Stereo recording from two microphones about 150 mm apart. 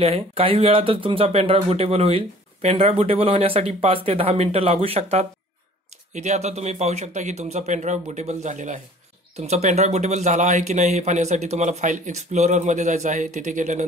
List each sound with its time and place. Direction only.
0.0 s speech: 40° right (ahead or behind); by 13.8 s 55° right (ahead or behind)